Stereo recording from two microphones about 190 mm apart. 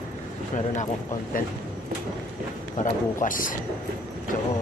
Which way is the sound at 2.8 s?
45° left (ahead or behind).